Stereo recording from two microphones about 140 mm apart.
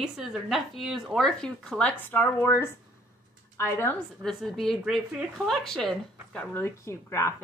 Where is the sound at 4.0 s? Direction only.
Centre (ahead or behind).